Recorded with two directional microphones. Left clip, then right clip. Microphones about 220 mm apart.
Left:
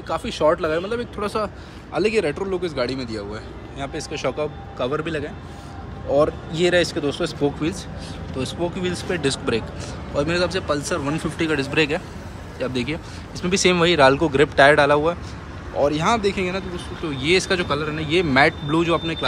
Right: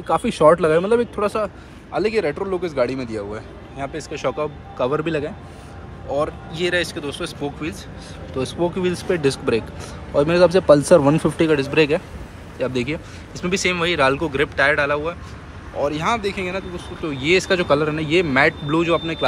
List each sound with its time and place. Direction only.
0.1 s speech: 25° right (ahead or behind)
1.1 s speech: 5° left (ahead or behind)
2.3 s speech: 10° right (ahead or behind)
2.6 s speech: centre (ahead or behind)
6.1 s speech: 15° left (ahead or behind)
8.4 s speech: centre (ahead or behind)